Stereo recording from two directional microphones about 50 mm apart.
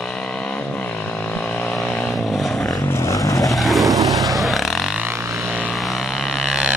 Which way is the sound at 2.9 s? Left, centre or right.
Left.